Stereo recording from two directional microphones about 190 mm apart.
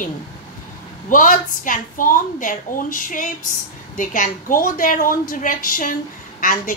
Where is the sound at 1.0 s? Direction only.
45° left (ahead or behind).